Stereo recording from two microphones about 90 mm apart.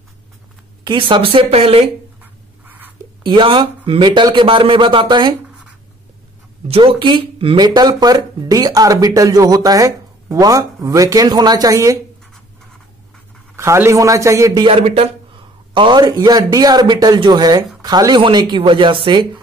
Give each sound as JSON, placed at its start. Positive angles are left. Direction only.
{"t": 0.8, "sound": "speech", "side_deg": -65}
{"t": 3.3, "sound": "a man's voice", "side_deg": -65}
{"t": 6.7, "sound": "speech", "side_deg": -90}
{"t": 7.5, "sound": "speech", "side_deg": -50}
{"t": 13.6, "sound": "a man's voice", "side_deg": -30}
{"t": 14.6, "sound": "speech", "side_deg": -90}
{"t": 15.7, "sound": "speech", "side_deg": -60}
{"t": 18.2, "sound": "speech", "side_deg": -65}